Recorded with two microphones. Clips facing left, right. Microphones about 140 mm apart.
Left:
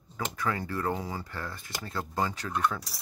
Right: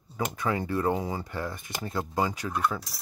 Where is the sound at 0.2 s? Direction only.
20° right (ahead or behind).